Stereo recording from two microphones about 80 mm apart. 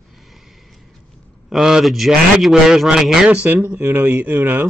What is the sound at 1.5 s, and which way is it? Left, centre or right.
Speech, centre.